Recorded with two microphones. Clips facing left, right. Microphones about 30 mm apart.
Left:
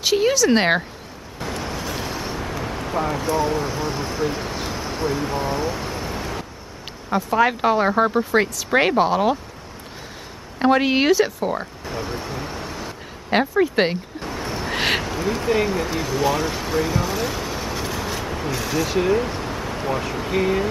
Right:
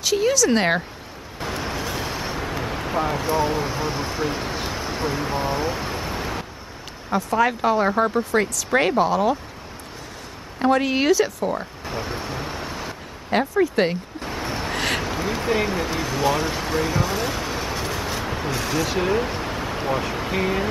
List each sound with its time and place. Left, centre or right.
0.0 s speech: centre
1.4 s vehicle: centre
7.2 s speech: centre
10.6 s speech: left
11.8 s vehicle: centre
13.3 s speech: left
14.2 s a sound: centre
15.0 s speech: centre